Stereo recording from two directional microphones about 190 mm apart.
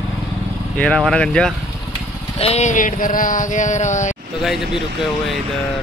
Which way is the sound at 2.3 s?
35° left (ahead or behind).